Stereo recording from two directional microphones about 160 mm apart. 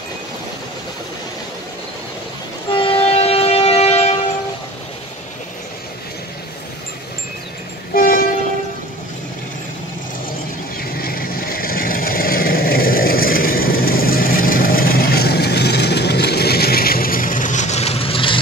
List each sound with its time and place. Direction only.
2.7 s train: 35° left (ahead or behind)
7.9 s train: 60° left (ahead or behind)
10.8 s vehicle: 70° left (ahead or behind); by 18.4 s 35° left (ahead or behind)